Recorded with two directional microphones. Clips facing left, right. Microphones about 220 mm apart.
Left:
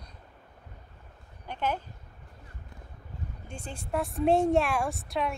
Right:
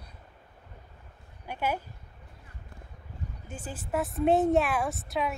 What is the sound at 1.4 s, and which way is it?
Speech, 10° right (ahead or behind).